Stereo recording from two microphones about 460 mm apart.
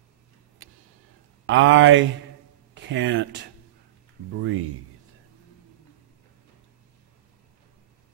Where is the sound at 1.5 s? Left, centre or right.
Right.